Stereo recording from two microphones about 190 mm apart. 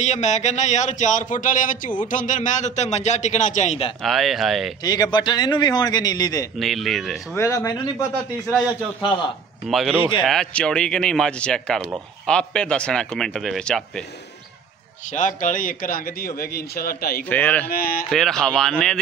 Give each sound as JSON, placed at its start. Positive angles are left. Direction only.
{"t": 0.0, "sound": "speech", "side_deg": 35}
{"t": 4.0, "sound": "speech", "side_deg": 0}
{"t": 4.8, "sound": "a man's voice", "side_deg": 20}
{"t": 6.6, "sound": "speech", "side_deg": 0}
{"t": 7.3, "sound": "a man's voice", "side_deg": 15}
{"t": 9.7, "sound": "speech", "side_deg": 0}
{"t": 15.0, "sound": "speech", "side_deg": 40}
{"t": 17.2, "sound": "speech", "side_deg": 10}
{"t": 17.6, "sound": "speech", "side_deg": 50}
{"t": 18.1, "sound": "speech", "side_deg": 5}